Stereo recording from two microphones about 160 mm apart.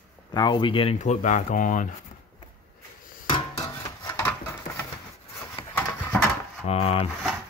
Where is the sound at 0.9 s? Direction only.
50° left (ahead or behind).